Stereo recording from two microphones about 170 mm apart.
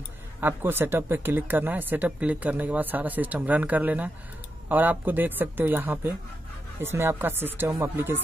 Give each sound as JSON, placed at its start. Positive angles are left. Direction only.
{"t": 0.4, "sound": "speech", "side_deg": -10}